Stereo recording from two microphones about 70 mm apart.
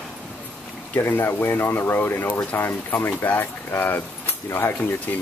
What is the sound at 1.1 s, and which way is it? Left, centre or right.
Speech, left.